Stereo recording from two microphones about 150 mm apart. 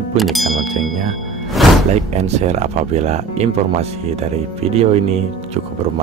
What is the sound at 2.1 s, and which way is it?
Speech, 45° right (ahead or behind).